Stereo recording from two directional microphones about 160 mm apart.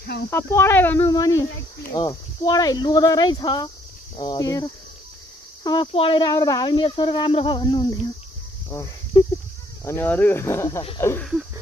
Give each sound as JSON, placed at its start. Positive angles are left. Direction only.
{"t": 0.0, "sound": "speech", "side_deg": 80}
{"t": 0.3, "sound": "speech", "side_deg": 15}